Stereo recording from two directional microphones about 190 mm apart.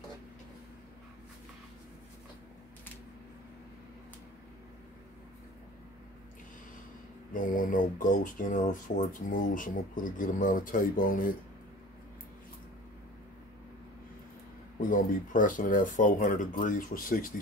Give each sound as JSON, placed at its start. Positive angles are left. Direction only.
{"t": 7.3, "sound": "speech", "side_deg": 45}
{"t": 14.8, "sound": "speech", "side_deg": 45}